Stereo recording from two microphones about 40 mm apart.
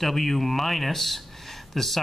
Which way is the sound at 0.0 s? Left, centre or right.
Centre.